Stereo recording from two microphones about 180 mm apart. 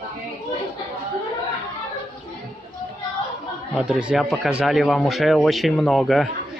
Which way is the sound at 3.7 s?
5° right (ahead or behind).